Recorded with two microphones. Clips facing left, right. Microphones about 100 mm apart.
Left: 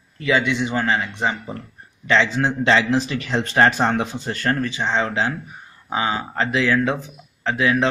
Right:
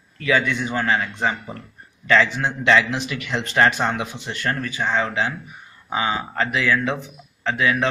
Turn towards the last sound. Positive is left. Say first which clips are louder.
# left 2 dB
turn(degrees=30)  # may be behind; listen again after turning